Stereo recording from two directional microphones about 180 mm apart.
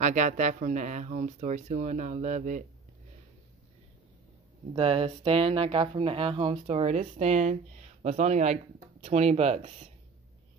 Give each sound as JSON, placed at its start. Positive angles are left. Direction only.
{"t": 0.0, "sound": "speech", "side_deg": -45}
{"t": 4.7, "sound": "speech", "side_deg": -30}